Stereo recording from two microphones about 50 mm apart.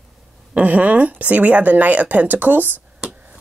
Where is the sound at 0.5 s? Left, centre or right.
Right.